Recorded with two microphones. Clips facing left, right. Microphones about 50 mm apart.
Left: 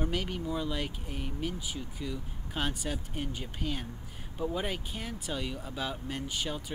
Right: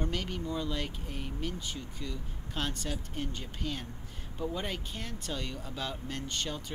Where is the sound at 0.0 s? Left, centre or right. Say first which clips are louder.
Left 2 dB; centre.